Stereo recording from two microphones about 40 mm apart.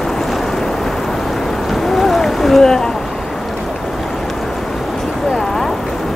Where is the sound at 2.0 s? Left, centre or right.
Centre.